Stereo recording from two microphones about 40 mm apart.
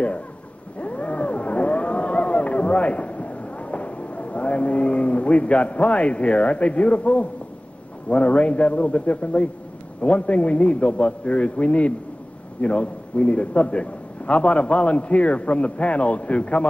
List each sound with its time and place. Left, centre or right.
0.7 s wild animals: left
8.1 s a man's voice: left